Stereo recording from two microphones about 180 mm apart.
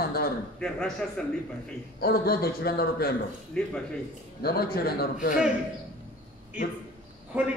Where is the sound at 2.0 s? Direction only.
60° left (ahead or behind).